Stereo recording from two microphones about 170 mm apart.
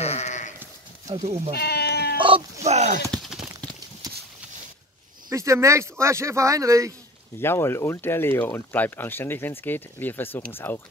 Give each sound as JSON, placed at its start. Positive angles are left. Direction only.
{"t": 0.0, "sound": "sheep", "side_deg": 40}
{"t": 0.6, "sound": "sheep", "side_deg": -20}
{"t": 1.5, "sound": "sheep", "side_deg": 70}
{"t": 2.1, "sound": "cat", "side_deg": -30}
{"t": 2.6, "sound": "a sound", "side_deg": -40}
{"t": 3.1, "sound": "a sound", "side_deg": 0}
{"t": 5.3, "sound": "speech", "side_deg": -15}
{"t": 7.3, "sound": "speech", "side_deg": 15}